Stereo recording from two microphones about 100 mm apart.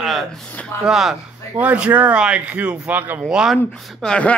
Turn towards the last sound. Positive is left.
turn(degrees=10)  # may be behind; listen again after turning